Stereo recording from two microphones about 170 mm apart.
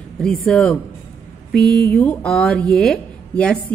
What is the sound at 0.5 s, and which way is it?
Speech, 5° left (ahead or behind).